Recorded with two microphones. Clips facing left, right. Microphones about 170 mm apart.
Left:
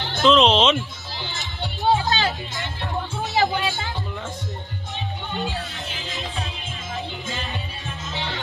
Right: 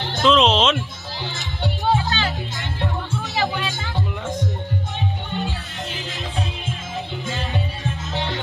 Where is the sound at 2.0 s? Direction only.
40° left (ahead or behind).